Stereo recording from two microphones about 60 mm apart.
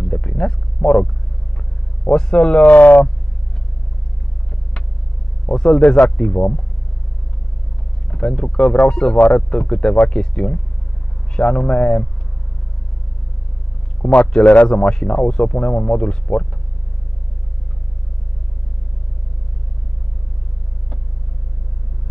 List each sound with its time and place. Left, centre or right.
0.0 s a sound: centre
2.0 s speech: centre; by 3.1 s left
5.5 s speech: centre
8.1 s speech: centre
14.0 s a man's voice: centre
14.7 s speech: centre